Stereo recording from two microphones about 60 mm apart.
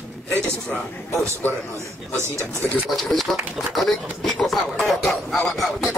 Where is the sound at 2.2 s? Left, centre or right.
Right.